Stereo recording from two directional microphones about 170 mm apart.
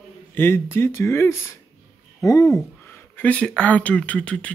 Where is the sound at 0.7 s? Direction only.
15° left (ahead or behind).